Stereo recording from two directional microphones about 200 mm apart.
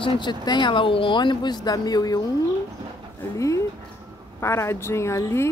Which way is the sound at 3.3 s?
15° left (ahead or behind).